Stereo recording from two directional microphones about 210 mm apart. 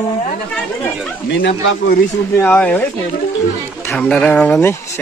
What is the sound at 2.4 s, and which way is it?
Speech, 5° left (ahead or behind).